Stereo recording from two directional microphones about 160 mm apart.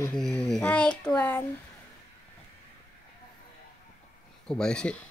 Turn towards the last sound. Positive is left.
turn(degrees=5)  # may be behind; listen again after turning